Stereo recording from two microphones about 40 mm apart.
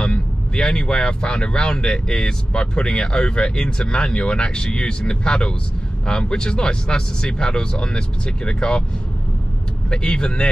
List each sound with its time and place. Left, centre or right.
0.0 s speech: left
9.8 s speech: left